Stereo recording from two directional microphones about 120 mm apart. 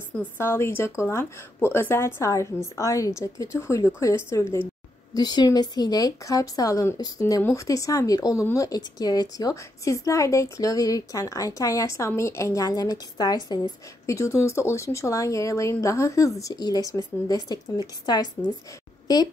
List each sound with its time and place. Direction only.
0.4 s speech: 20° left (ahead or behind)
5.1 s a woman's voice: 35° left (ahead or behind)